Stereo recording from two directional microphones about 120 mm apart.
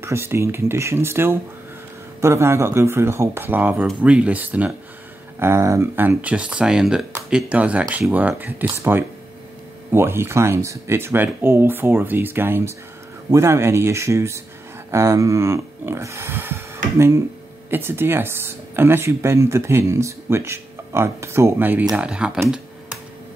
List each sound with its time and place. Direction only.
0.0 s speech: 20° right (ahead or behind)
5.4 s speech: 25° right (ahead or behind)